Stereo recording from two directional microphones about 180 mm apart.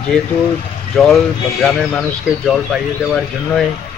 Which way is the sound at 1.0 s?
Centre (ahead or behind).